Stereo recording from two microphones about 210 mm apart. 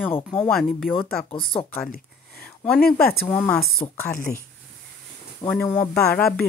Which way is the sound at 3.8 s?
20° left (ahead or behind).